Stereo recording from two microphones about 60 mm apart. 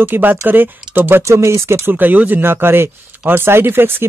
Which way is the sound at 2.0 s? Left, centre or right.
Right.